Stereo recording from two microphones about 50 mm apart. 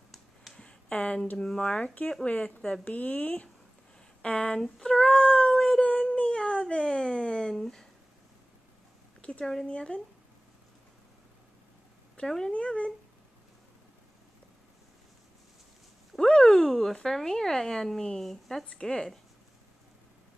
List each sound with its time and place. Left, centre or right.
0.1 s a sound: centre
0.6 s a sound: left
1.4 s speech: centre
2.2 s speech: left
4.6 s speech: centre
5.8 s dog: left
6.3 s a sound: centre
9.2 s a sound: left
9.7 s speech: left
12.2 s speech: centre
12.5 s speech: left
16.2 s speech: centre
18.7 s speech: centre